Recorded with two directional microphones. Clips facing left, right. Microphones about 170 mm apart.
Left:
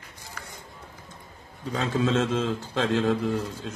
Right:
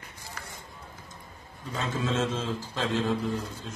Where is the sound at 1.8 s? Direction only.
60° left (ahead or behind).